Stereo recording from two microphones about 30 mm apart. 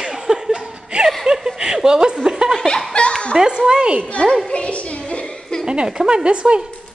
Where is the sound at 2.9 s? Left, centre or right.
Left.